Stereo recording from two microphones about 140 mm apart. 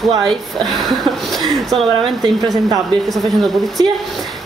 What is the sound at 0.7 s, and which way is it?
Speech, centre (ahead or behind).